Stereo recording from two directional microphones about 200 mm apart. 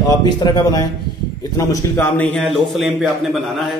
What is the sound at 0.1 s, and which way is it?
A man's voice, 20° left (ahead or behind).